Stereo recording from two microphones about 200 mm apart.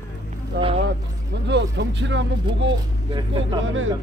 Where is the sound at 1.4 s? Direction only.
60° right (ahead or behind).